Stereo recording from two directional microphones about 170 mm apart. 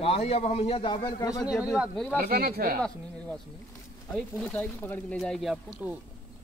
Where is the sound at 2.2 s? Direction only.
65° right (ahead or behind).